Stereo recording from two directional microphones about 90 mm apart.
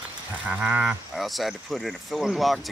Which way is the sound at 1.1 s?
Centre (ahead or behind).